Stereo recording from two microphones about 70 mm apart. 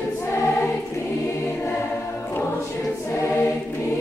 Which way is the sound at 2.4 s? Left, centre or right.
Left.